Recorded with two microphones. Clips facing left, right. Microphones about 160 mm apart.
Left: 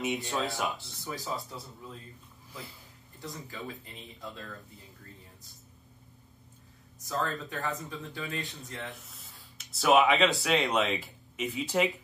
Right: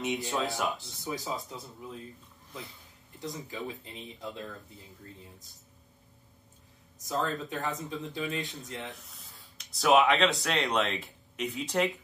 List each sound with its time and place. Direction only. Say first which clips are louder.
0.0 s speech: even; centre (ahead or behind)
1.0 s speech: right 1 dB; 20° right (ahead or behind)
3.4 s speech: right 2 dB; 20° right (ahead or behind)
7.1 s speech: right 1 dB; 20° right (ahead or behind)
8.8 s speech: even; centre (ahead or behind)